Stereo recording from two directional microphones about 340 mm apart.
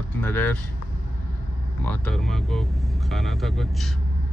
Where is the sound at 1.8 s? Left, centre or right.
Centre.